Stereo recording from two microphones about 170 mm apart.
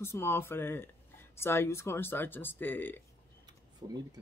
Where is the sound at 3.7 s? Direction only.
25° right (ahead or behind).